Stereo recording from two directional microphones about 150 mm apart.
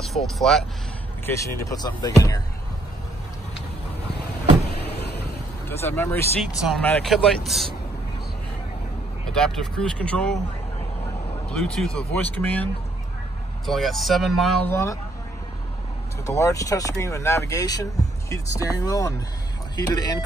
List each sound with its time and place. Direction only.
0.0 s speech: centre (ahead or behind)
1.2 s speech: 20° left (ahead or behind)
4.8 s a sound: 90° left
5.7 s speech: 15° left (ahead or behind)
6.8 s speech: 5° left (ahead or behind)
9.3 s speech: 5° left (ahead or behind)
11.4 s speech: 5° left (ahead or behind)
13.7 s speech: centre (ahead or behind)
14.7 s speech: 20° left (ahead or behind)
16.3 s speech: 20° left (ahead or behind)